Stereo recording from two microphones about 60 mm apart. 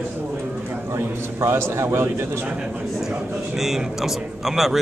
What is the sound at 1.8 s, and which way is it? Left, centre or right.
Speech, right.